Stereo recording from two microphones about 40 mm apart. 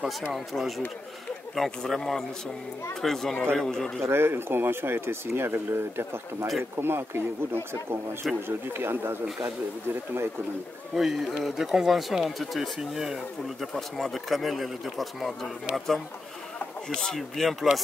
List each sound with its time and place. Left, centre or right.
0.3 s speech: centre
4.1 s speech: right
11.0 s speech: centre
13.7 s speech: centre
16.9 s speech: centre